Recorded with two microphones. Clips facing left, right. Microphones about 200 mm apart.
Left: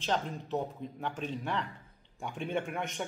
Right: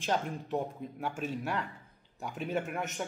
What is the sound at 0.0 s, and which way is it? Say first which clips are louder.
A man's voice: right 1 dB; 10° right (ahead or behind).